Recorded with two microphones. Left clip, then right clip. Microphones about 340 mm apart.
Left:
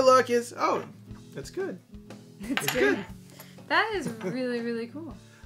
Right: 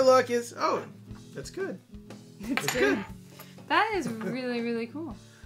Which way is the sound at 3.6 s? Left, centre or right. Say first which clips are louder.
Even; right.